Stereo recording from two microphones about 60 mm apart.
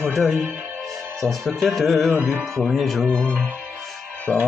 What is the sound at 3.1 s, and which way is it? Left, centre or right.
Speech, centre.